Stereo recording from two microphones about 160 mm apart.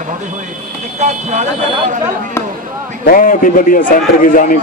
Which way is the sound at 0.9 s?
45° right (ahead or behind).